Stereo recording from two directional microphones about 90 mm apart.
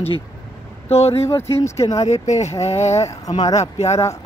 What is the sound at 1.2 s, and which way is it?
Speech, 30° left (ahead or behind).